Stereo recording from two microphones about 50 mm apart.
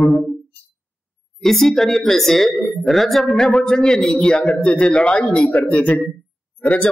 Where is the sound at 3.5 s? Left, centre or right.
Centre.